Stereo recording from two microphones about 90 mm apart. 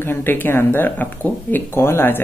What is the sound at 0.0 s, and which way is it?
Speech, 25° left (ahead or behind).